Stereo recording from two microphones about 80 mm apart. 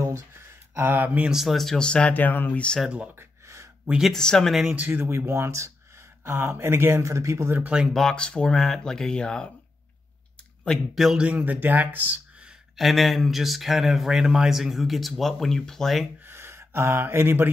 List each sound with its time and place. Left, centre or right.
0.7 s speech: right
1.3 s speech: centre
3.2 s gasp: right
4.0 s speech: centre
4.7 s speech: right
7.6 s speech: centre
7.9 s speech: centre
11.0 s speech: centre
11.2 s speech: centre
12.7 s speech: centre
16.3 s a sound: right